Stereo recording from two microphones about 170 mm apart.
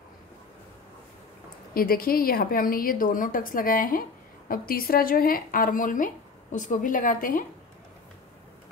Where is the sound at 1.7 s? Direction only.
60° left (ahead or behind).